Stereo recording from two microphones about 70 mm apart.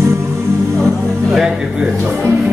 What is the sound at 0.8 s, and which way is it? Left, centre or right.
Music, centre.